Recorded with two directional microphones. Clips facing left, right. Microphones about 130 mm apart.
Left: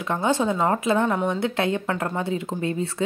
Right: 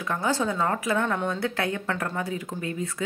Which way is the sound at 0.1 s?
20° left (ahead or behind).